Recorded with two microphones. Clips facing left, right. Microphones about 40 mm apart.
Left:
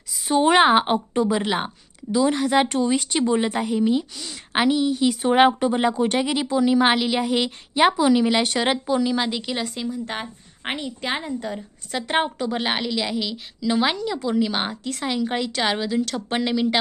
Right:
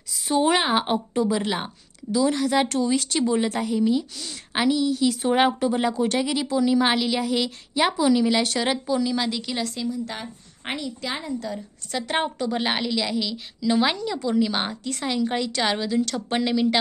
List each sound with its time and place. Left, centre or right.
0.4 s a woman's voice: left
9.8 s a woman's voice: left
10.6 s a woman's voice: left
11.1 s a woman's voice: left
11.9 s a woman's voice: centre